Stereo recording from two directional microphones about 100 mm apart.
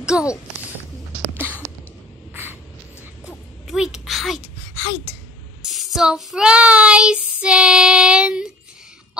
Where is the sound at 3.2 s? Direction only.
5° right (ahead or behind).